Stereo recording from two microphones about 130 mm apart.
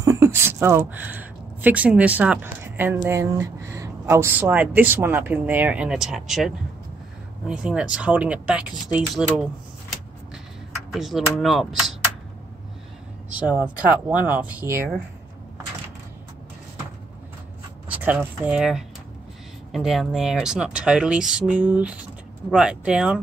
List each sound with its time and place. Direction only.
0.0 s a sound: 25° right (ahead or behind)
1.6 s speech: 10° right (ahead or behind)
13.5 s speech: 15° right (ahead or behind)
17.8 s speech: 10° right (ahead or behind)